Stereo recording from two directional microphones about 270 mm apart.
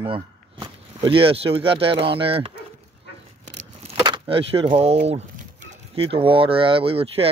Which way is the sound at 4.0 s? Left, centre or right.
Centre.